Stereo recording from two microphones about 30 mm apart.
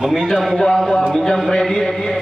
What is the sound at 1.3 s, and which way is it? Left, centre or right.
Speech, centre.